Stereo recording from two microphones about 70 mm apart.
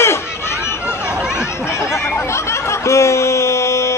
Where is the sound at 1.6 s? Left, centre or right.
Left.